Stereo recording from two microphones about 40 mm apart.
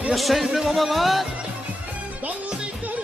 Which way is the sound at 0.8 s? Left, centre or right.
Centre.